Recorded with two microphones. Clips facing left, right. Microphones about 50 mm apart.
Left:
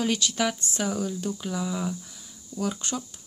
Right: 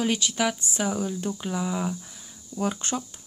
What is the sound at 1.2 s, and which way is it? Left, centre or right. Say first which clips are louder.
Speech: right 1 dB; right.